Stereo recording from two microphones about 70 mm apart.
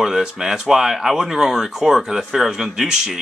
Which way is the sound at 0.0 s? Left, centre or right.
Centre.